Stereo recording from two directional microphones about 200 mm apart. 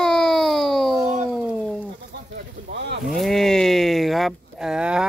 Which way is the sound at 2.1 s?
50° right (ahead or behind).